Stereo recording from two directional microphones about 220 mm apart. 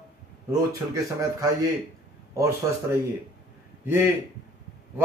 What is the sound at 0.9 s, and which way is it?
A man's voice, 15° right (ahead or behind).